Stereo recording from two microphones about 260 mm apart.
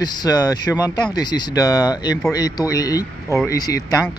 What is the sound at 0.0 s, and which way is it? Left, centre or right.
Speech, centre.